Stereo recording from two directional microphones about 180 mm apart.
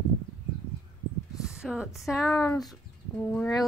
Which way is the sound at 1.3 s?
5° right (ahead or behind).